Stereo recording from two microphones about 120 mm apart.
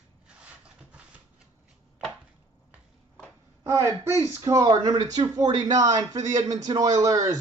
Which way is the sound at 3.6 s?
25° right (ahead or behind).